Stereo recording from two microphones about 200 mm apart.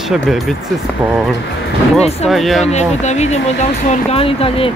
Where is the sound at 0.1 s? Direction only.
Centre (ahead or behind).